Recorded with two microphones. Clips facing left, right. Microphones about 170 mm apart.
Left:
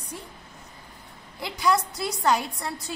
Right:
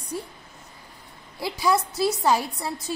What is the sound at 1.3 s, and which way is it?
A woman's voice, 10° right (ahead or behind).